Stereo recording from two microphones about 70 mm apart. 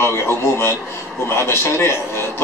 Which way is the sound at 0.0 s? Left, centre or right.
Left.